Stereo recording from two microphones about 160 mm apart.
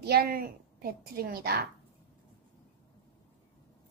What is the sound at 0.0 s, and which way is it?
A woman's voice, 75° right (ahead or behind).